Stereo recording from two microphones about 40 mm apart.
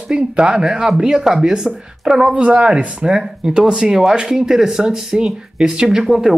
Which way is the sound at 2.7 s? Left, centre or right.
Right.